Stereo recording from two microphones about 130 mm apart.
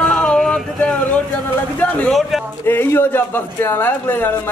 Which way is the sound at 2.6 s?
15° left (ahead or behind).